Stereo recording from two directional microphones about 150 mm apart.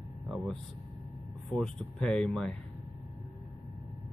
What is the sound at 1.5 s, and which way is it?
Speech, 5° left (ahead or behind).